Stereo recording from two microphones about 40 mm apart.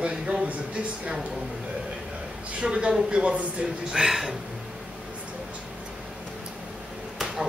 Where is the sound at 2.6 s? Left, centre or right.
Right.